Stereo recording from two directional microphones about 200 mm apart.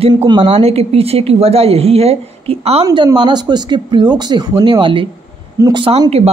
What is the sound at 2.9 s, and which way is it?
Speech, 20° right (ahead or behind).